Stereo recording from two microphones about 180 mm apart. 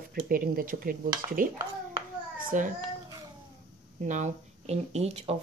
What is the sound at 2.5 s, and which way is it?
Speech, 45° right (ahead or behind).